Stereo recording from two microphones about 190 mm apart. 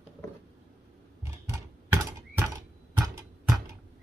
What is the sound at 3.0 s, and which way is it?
Tick-tock, 15° right (ahead or behind).